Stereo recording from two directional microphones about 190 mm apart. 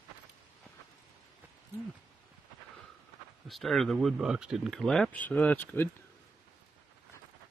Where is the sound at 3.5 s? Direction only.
Centre (ahead or behind).